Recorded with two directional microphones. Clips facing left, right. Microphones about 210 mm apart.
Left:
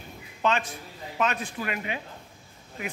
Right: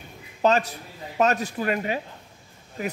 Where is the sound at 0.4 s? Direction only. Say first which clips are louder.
Right 5 dB; 40° right (ahead or behind).